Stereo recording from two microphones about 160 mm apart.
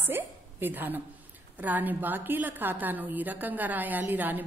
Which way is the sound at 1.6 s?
10° right (ahead or behind).